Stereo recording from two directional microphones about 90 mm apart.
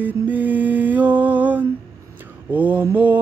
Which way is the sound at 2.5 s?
20° right (ahead or behind).